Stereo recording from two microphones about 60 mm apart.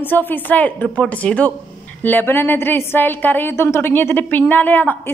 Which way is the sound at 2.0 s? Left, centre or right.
Left.